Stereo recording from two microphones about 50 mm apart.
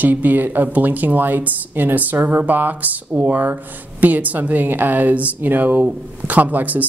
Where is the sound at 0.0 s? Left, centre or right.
Right.